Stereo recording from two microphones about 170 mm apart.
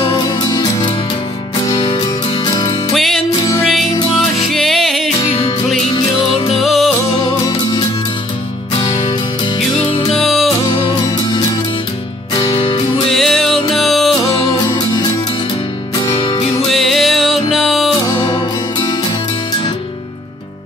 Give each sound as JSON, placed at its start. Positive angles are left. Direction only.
{"t": 0.0, "sound": "music", "side_deg": 25}
{"t": 2.9, "sound": "music", "side_deg": 0}
{"t": 4.5, "sound": "music", "side_deg": 0}
{"t": 5.9, "sound": "music", "side_deg": 30}
{"t": 6.6, "sound": "music", "side_deg": 0}
{"t": 10.1, "sound": "music", "side_deg": 0}
{"t": 10.7, "sound": "music", "side_deg": 30}
{"t": 12.5, "sound": "music", "side_deg": 30}
{"t": 13.1, "sound": "music", "side_deg": 0}
{"t": 14.5, "sound": "music", "side_deg": 20}
{"t": 16.2, "sound": "music", "side_deg": 30}
{"t": 16.7, "sound": "music", "side_deg": 0}
{"t": 18.3, "sound": "music", "side_deg": 25}